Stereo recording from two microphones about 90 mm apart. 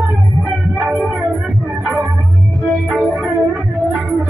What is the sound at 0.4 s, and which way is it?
Music, 15° right (ahead or behind).